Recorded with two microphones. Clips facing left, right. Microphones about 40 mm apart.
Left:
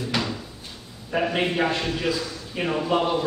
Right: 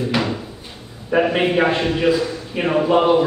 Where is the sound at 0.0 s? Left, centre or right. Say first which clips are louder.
Right 6 dB; right.